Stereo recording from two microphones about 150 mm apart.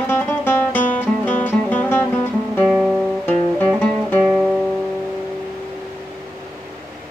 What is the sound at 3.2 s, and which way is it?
Guitar, 10° left (ahead or behind).